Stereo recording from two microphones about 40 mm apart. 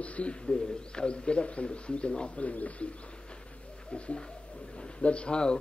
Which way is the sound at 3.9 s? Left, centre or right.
Left.